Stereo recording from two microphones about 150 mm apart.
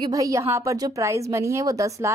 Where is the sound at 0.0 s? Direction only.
20° right (ahead or behind).